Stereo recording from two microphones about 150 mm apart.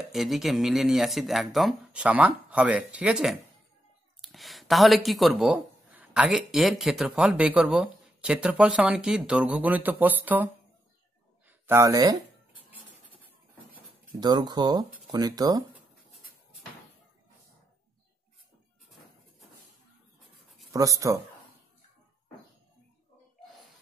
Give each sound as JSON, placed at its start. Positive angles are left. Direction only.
{"t": 0.1, "sound": "speech", "side_deg": 0}
{"t": 14.2, "sound": "speech", "side_deg": -30}
{"t": 20.7, "sound": "speech", "side_deg": -20}